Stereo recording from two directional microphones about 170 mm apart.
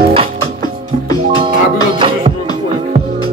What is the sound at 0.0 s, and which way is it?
Music, 35° right (ahead or behind).